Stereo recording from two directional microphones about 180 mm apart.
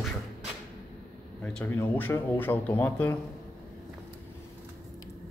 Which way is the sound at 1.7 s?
10° left (ahead or behind).